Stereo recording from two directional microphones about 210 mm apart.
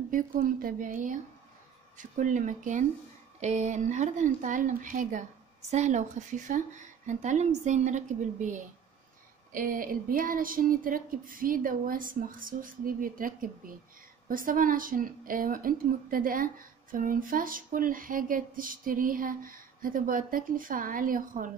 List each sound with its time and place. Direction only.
0.1 s a woman's voice: 40° right (ahead or behind)